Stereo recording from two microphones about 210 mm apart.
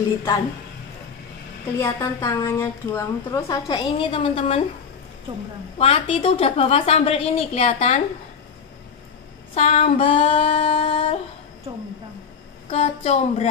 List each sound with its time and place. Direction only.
1.8 s a woman's voice: 10° left (ahead or behind)
5.8 s a woman's voice: 25° left (ahead or behind)
9.5 s a woman's voice: 35° left (ahead or behind)
12.6 s a woman's voice: 30° left (ahead or behind)